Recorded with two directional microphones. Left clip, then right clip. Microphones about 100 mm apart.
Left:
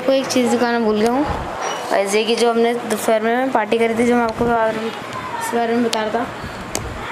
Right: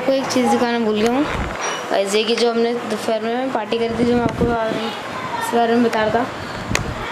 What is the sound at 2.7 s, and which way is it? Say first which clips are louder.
Speech: left 3 dB; 25° left (ahead or behind).